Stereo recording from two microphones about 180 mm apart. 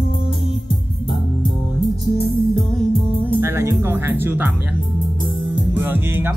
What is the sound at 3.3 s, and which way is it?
Music, 15° right (ahead or behind).